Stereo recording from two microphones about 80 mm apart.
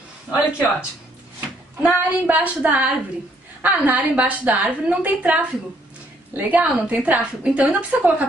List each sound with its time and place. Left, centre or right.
0.3 s a woman's voice: centre